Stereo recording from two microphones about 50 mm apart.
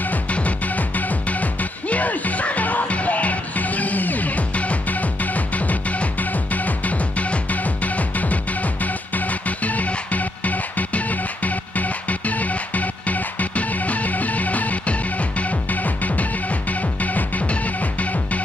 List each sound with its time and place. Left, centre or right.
0.0 s music: left